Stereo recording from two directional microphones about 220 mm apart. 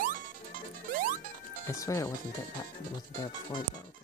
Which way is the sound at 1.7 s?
15° left (ahead or behind).